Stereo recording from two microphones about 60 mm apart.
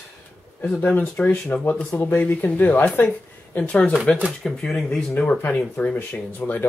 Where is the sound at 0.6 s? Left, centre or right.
Left.